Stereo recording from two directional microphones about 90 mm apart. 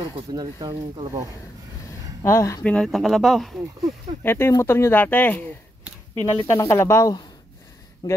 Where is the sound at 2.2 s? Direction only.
35° left (ahead or behind).